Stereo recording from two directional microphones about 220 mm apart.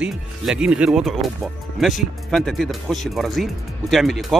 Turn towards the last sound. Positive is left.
turn(degrees=0)  # may be behind; listen again after turning